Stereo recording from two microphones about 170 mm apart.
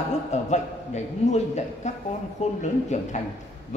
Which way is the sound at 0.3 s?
40° left (ahead or behind).